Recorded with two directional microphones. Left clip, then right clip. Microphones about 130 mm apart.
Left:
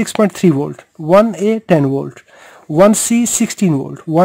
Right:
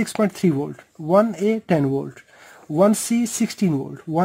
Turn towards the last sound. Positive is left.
turn(degrees=50)  # may be behind; listen again after turning